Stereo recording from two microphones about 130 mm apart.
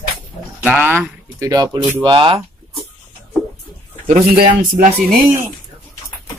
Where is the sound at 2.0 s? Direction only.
40° right (ahead or behind).